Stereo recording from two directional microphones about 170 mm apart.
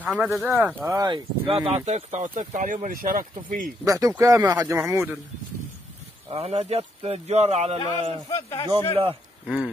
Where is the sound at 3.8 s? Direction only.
20° right (ahead or behind).